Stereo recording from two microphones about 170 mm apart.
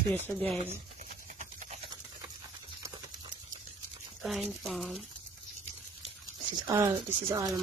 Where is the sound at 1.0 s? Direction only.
45° right (ahead or behind).